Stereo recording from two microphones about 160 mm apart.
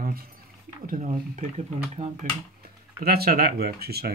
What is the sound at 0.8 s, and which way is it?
Speech, 50° right (ahead or behind).